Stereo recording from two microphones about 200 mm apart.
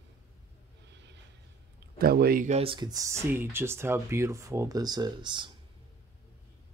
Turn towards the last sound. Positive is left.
turn(degrees=-25)  # may be behind; listen again after turning